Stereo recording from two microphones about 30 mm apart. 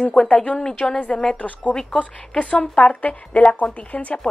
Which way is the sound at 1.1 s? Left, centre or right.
Centre.